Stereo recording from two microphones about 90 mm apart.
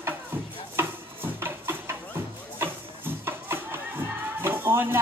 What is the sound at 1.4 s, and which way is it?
Music, 25° right (ahead or behind).